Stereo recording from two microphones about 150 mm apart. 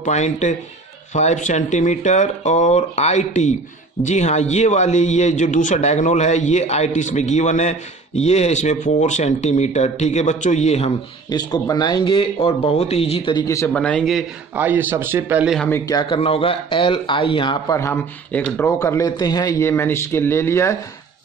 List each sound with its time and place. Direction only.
0.0 s a man's voice: 50° left (ahead or behind)
11.2 s speech: 25° left (ahead or behind)
13.7 s a man's voice: 5° left (ahead or behind)
14.5 s a man's voice: 10° right (ahead or behind)
15.7 s a man's voice: 25° left (ahead or behind)
16.2 s speech: 40° left (ahead or behind)
17.7 s a man's voice: 15° left (ahead or behind)